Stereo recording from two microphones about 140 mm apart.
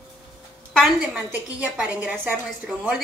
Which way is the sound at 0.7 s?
10° right (ahead or behind).